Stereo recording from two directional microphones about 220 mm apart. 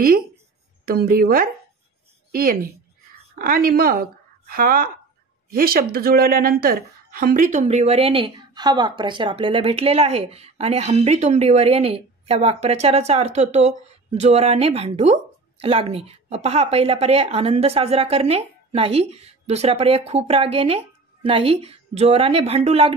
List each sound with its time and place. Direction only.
0.8 s a woman's voice: 40° right (ahead or behind)